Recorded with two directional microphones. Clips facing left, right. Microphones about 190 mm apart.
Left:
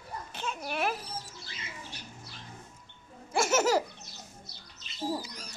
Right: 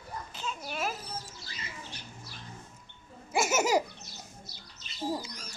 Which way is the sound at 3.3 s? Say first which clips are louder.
Left 1 dB; 10° right (ahead or behind).